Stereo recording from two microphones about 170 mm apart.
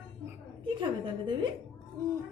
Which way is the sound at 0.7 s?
30° right (ahead or behind).